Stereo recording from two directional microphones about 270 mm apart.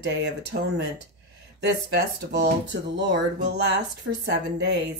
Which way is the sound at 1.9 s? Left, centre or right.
Right.